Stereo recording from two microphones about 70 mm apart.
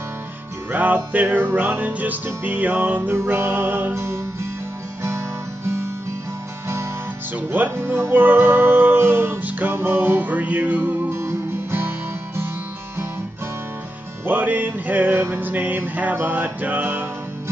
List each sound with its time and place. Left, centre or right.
0.7 s music: right
3.9 s music: right
7.7 s music: right
11.1 s music: right
14.2 s music: right